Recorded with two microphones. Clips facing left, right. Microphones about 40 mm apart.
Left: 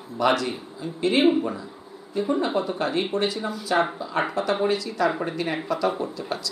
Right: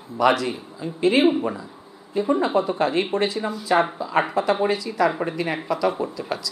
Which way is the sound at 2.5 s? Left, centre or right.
Centre.